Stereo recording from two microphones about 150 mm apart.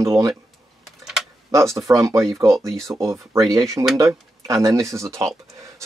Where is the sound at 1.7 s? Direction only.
20° right (ahead or behind).